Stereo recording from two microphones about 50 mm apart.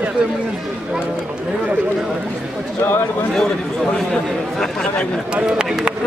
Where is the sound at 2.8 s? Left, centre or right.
Left.